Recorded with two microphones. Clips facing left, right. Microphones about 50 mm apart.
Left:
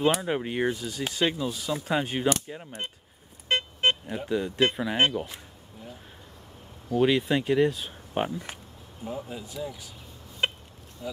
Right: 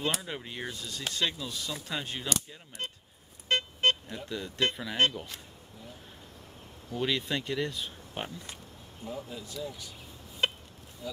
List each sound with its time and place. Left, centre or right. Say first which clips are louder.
0.0 s speech: left 9 dB; left
0.8 s speech: left 5 dB; centre
3.4 s vehicle: left 2 dB; left
4.4 s speech: left 5 dB; left
7.0 s speech: left 8 dB; centre
10.4 s chicken: left 2 dB; centre